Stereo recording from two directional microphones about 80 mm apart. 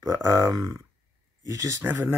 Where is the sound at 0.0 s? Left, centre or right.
Right.